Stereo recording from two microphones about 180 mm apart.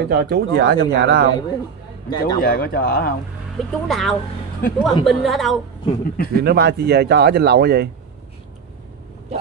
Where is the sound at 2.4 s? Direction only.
60° left (ahead or behind).